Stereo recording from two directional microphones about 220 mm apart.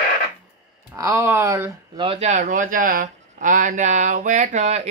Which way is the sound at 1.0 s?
10° right (ahead or behind).